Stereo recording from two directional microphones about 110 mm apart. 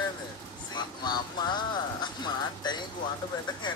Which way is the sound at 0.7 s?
40° left (ahead or behind).